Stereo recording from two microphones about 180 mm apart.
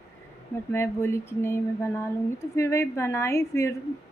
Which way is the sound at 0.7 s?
15° left (ahead or behind).